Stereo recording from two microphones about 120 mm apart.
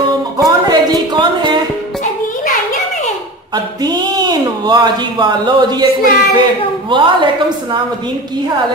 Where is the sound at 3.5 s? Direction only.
35° right (ahead or behind).